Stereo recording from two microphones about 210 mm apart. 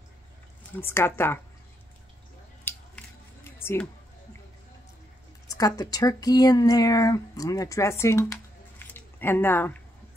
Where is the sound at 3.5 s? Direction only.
10° left (ahead or behind).